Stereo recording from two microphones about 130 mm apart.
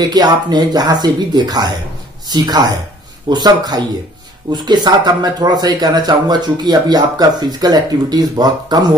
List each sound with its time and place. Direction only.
0.1 s speech: 30° right (ahead or behind)